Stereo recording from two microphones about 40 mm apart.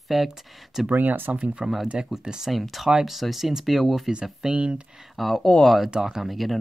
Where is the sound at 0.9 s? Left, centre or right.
Right.